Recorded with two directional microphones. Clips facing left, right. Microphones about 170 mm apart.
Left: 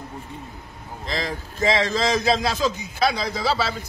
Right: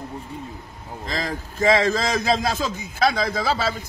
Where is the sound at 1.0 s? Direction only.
45° right (ahead or behind).